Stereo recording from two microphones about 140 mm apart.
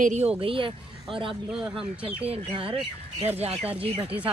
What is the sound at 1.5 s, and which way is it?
Speech, 5° right (ahead or behind).